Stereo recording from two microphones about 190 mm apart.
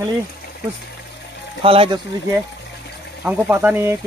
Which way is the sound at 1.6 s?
30° right (ahead or behind).